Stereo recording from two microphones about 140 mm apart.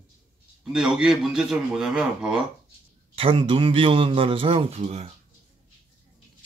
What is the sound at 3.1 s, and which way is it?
A man's voice, 40° right (ahead or behind).